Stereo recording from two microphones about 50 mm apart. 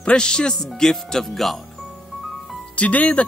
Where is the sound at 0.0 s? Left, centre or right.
Centre.